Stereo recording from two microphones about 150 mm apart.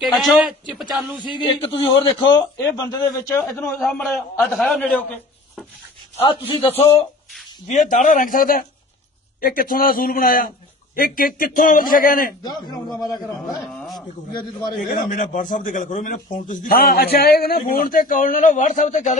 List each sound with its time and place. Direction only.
0.0 s a man's voice: centre (ahead or behind)
1.2 s a man's voice: 30° left (ahead or behind); by 3.8 s 15° left (ahead or behind)
3.8 s a man's voice: 5° left (ahead or behind)
6.2 s a man's voice: 35° left (ahead or behind)
7.6 s a man's voice: 55° left (ahead or behind); by 12.4 s 75° left (ahead or behind)
12.4 s a man's voice: 30° left (ahead or behind)
13.7 s a sound: centre (ahead or behind)
13.9 s a man's voice: 25° left (ahead or behind)
14.9 s a man's voice: 60° left (ahead or behind)